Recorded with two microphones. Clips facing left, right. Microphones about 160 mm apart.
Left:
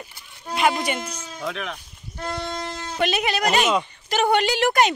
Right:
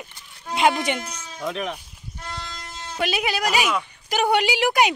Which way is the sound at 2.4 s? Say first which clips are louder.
Left 9 dB; 65° left (ahead or behind).